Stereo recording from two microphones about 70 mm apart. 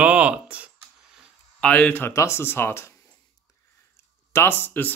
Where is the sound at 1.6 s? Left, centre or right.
Centre.